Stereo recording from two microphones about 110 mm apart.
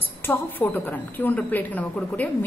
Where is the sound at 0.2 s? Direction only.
15° left (ahead or behind).